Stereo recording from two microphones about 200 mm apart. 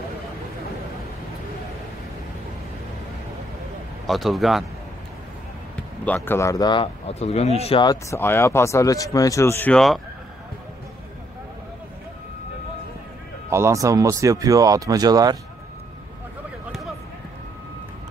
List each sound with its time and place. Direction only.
4.1 s speech: centre (ahead or behind)
6.0 s speech: 10° left (ahead or behind)
13.5 s speech: 15° right (ahead or behind)